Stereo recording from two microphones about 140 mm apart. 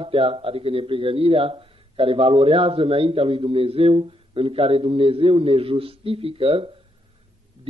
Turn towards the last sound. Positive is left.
turn(degrees=-40)  # may be behind; listen again after turning